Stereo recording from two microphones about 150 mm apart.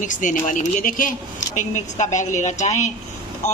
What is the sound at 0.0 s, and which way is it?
Speech, 60° left (ahead or behind).